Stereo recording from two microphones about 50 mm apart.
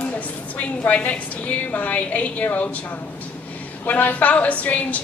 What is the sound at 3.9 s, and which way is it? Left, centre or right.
A woman's voice, left.